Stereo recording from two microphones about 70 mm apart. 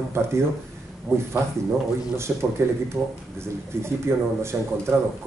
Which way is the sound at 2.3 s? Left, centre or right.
Centre.